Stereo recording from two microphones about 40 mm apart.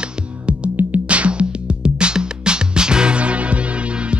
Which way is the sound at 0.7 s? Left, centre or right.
Right.